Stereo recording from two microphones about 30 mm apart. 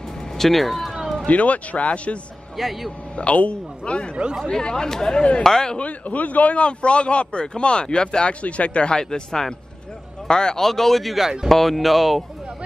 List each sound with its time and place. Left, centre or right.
0.4 s speech: centre
1.2 s speech: left
2.5 s speech: centre
3.2 s speech: left
4.5 s speech: left
5.1 s speech: left
5.4 s speech: centre
5.8 s speech: left
6.6 s speech: left
8.3 s speech: left
8.9 s speech: left
10.6 s speech: centre